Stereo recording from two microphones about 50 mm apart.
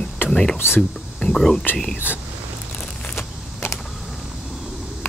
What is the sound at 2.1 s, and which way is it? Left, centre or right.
Speech, left.